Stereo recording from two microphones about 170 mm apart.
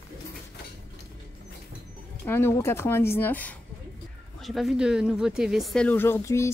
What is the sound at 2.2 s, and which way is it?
Speech, 15° left (ahead or behind).